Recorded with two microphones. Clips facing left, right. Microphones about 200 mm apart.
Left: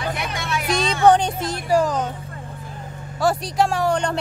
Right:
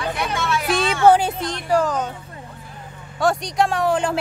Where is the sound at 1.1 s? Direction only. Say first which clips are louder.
Right 1 dB; 5° right (ahead or behind).